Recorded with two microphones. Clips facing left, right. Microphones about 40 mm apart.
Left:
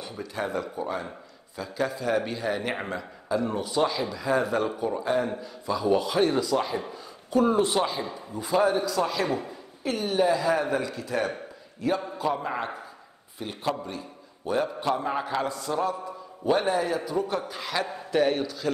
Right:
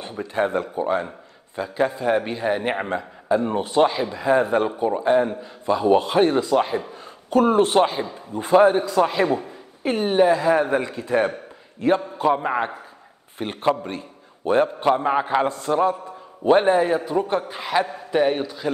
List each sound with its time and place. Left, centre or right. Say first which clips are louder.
0.0 s a man's voice: right 8 dB; right
6.9 s a man's voice: right 5 dB; right
13.4 s a man's voice: right 8 dB; right